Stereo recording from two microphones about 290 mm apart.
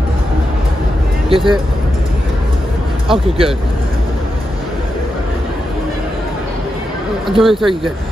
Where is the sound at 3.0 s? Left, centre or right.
Centre.